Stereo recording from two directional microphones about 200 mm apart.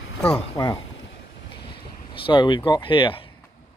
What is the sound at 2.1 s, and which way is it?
Speech, 25° left (ahead or behind).